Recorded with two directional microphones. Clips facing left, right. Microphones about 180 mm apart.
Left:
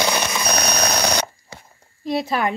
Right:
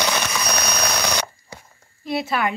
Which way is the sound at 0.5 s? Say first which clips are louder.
Left 4 dB; 40° left (ahead or behind).